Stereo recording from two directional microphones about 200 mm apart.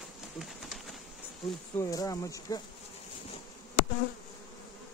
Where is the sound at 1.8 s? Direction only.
15° left (ahead or behind).